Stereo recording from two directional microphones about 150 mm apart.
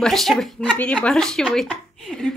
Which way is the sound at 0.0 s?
Centre (ahead or behind).